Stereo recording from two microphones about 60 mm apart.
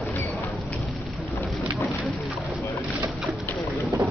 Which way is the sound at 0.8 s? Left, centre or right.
Centre.